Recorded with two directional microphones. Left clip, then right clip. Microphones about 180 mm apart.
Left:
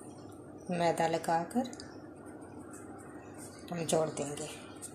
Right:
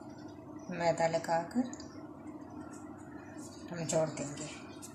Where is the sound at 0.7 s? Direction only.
40° left (ahead or behind).